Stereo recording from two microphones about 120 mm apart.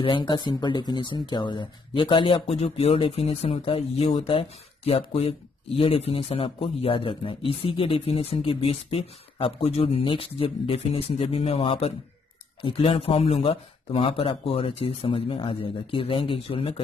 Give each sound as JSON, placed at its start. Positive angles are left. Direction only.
{"t": 0.0, "sound": "speech", "side_deg": 40}